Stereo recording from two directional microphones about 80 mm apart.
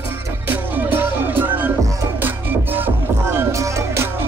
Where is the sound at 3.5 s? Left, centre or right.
Right.